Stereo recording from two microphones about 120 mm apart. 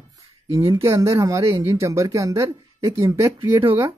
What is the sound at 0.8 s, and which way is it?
Speech, 25° right (ahead or behind).